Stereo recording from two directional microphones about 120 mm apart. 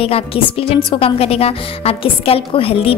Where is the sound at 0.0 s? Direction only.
50° left (ahead or behind).